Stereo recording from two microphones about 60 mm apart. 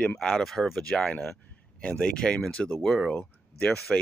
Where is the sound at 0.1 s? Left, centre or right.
Centre.